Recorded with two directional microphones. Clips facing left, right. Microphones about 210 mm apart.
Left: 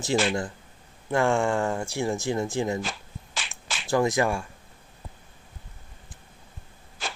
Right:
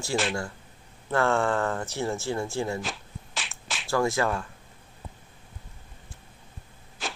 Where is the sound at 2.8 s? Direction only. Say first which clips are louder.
Left 1 dB; centre (ahead or behind).